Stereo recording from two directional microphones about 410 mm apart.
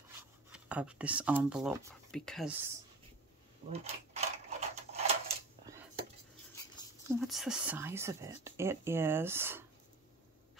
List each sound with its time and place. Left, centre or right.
0.5 s a woman's voice: centre
3.7 s a sound: centre
7.1 s a woman's voice: centre